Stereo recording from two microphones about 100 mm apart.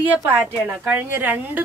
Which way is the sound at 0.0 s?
20° right (ahead or behind).